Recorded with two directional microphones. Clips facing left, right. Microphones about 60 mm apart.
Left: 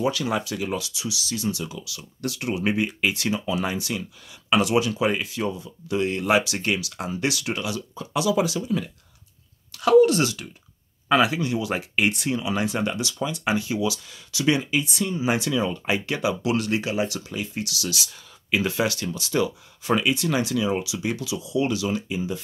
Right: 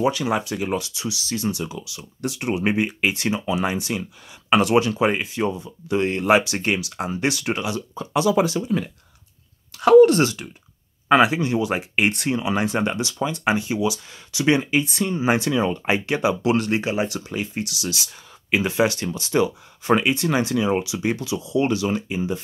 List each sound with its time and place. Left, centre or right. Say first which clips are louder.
0.0 s speech: right 3 dB; right
4.5 s speech: right 3 dB; right
12.1 s speech: right 3 dB; right
14.6 s speech: right 3 dB; right